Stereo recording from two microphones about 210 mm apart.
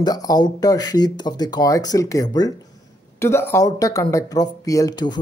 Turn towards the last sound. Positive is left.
turn(degrees=20)  # may be behind; listen again after turning